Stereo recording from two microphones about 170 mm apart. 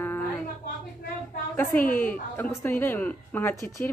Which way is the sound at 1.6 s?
10° left (ahead or behind).